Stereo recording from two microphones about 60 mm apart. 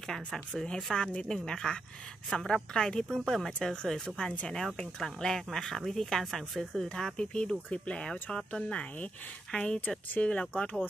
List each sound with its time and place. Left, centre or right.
0.0 s speech: centre
9.8 s speech: left